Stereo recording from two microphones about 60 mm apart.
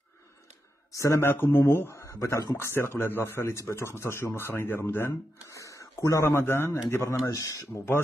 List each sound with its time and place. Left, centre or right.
0.9 s speech: left
1.2 s speech: left
1.9 s speech: left
2.5 s speech: left
5.5 s a sound: left
6.3 s speech: left
7.2 s speech: left
7.7 s speech: left